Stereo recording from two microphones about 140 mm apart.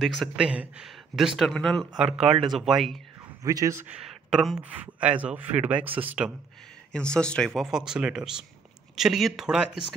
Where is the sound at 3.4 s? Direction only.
25° right (ahead or behind).